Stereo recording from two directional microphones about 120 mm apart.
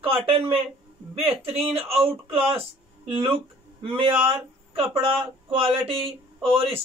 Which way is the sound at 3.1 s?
50° right (ahead or behind).